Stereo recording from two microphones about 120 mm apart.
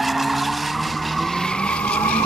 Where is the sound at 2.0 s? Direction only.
10° left (ahead or behind).